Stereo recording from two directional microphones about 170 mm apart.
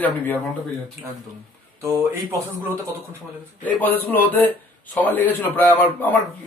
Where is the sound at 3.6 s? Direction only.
10° left (ahead or behind).